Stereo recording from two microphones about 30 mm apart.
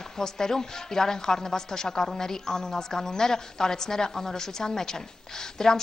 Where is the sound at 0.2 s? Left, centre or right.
Centre.